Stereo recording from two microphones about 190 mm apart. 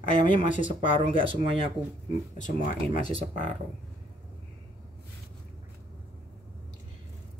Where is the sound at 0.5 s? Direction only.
40° left (ahead or behind).